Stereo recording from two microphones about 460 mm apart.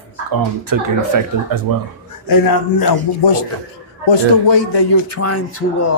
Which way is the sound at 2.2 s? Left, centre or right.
Left.